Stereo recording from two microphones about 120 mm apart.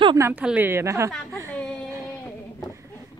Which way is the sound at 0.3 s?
15° right (ahead or behind).